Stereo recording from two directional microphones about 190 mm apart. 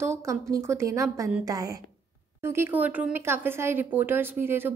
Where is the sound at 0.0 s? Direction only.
15° right (ahead or behind).